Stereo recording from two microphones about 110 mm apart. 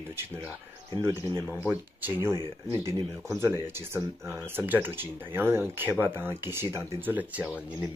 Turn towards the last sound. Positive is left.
turn(degrees=-15)  # may be behind; listen again after turning